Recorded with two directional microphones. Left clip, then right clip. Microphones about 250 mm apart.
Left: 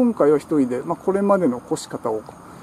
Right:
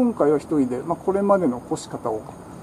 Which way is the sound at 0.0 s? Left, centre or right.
Centre.